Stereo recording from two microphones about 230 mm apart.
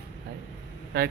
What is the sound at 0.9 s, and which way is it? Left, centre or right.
Speech, right.